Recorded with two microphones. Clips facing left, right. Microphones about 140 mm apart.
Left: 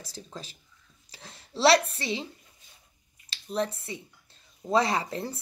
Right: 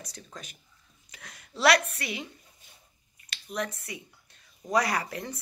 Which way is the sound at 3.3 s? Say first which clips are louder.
Left 4 dB; 30° left (ahead or behind).